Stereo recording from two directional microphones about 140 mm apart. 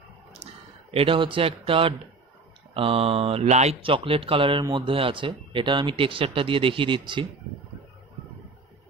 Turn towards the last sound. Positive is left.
turn(degrees=-35)  # may be behind; listen again after turning